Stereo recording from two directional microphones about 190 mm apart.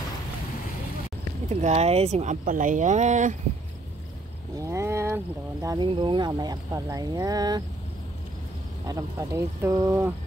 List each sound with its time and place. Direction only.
1.5 s speech: 35° right (ahead or behind)
4.6 s speech: 15° right (ahead or behind)
8.8 s speech: 20° right (ahead or behind)